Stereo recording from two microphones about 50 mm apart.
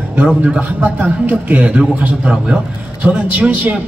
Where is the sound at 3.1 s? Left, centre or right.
Right.